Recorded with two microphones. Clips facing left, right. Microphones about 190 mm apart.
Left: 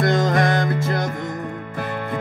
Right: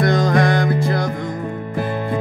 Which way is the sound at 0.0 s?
25° left (ahead or behind).